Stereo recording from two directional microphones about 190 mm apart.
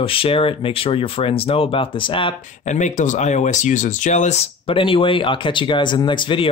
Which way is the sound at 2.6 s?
40° left (ahead or behind).